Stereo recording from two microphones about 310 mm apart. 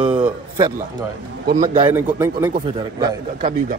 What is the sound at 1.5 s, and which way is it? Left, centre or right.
Speech, right.